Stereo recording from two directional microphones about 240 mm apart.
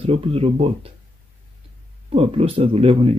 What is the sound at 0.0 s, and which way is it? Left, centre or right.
Speech, right.